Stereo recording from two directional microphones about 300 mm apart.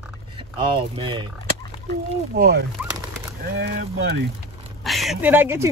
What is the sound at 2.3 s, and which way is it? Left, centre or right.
Speech, right.